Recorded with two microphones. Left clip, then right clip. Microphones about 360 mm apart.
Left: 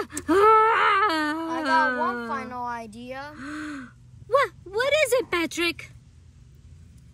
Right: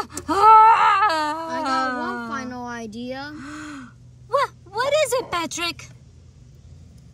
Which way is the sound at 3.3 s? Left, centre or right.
Centre.